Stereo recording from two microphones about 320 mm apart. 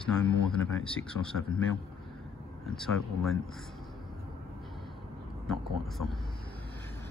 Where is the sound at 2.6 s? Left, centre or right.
Centre.